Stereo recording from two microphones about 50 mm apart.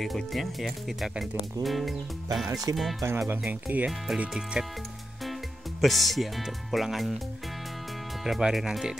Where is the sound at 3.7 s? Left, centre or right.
Right.